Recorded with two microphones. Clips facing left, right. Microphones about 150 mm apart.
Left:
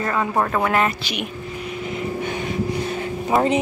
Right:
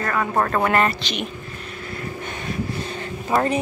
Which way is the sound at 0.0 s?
20° left (ahead or behind).